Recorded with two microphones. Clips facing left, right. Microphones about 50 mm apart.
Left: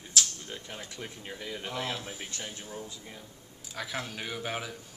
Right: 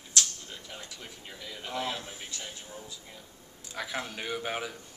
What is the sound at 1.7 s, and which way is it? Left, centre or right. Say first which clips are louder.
Speech: right 3 dB; centre.